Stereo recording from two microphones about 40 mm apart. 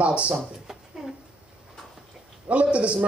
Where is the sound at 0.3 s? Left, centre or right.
Centre.